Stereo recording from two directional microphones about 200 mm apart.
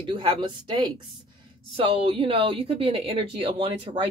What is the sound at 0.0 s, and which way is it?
Speech, 25° right (ahead or behind).